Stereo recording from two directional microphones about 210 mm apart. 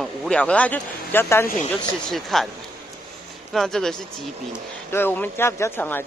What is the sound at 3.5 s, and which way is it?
Speech, centre (ahead or behind).